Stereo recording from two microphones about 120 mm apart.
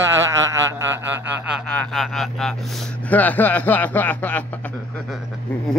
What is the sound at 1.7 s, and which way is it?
Speech, centre (ahead or behind).